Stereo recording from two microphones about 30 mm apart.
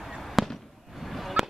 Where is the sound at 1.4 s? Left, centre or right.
Centre.